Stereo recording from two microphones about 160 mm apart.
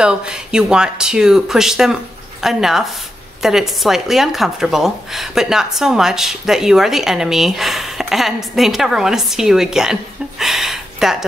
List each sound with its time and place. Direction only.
0.0 s speech: 5° right (ahead or behind)